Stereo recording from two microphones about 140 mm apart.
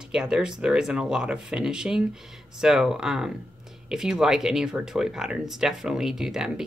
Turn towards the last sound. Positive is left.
turn(degrees=-5)  # may be behind; listen again after turning